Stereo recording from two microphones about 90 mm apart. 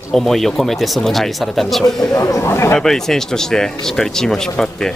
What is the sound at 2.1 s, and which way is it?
Speech, 35° left (ahead or behind).